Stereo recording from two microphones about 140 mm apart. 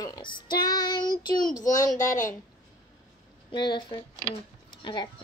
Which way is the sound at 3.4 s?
35° left (ahead or behind).